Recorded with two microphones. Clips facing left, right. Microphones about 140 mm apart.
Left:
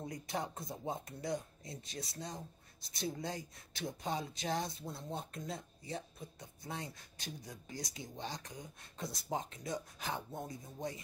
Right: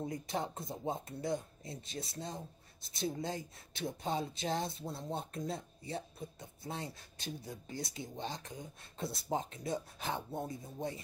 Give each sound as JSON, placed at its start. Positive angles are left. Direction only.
{"t": 0.0, "sound": "speech", "side_deg": -25}